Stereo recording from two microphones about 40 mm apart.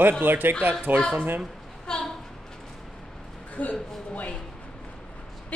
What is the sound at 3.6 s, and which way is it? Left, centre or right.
Speech, left.